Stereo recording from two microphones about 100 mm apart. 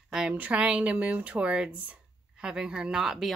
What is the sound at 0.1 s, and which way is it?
Speech, 10° right (ahead or behind).